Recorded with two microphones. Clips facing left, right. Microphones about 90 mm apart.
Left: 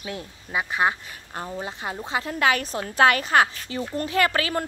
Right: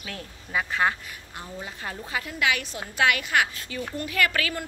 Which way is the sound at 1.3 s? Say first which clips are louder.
Left 7 dB; 40° left (ahead or behind).